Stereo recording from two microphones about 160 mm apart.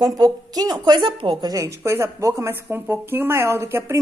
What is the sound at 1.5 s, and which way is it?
Speech, 20° right (ahead or behind).